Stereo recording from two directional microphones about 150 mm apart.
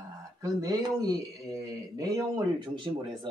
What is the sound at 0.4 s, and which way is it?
A man's voice, 25° right (ahead or behind).